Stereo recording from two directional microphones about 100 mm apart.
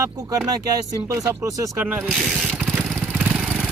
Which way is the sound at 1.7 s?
15° right (ahead or behind).